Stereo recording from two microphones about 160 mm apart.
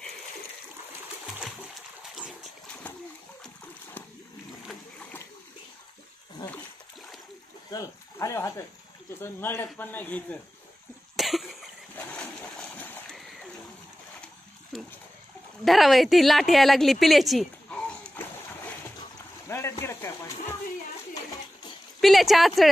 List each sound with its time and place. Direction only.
2.1 s splash: centre (ahead or behind)
6.4 s splash: 30° left (ahead or behind)
7.7 s a man's voice: 20° left (ahead or behind)
11.1 s cough: centre (ahead or behind)
11.9 s splash: 10° left (ahead or behind)
13.1 s bird: centre (ahead or behind)
14.2 s a sound: centre (ahead or behind)
15.6 s a woman's voice: centre (ahead or behind)
19.4 s a sound: 15° left (ahead or behind)
22.0 s speech: centre (ahead or behind)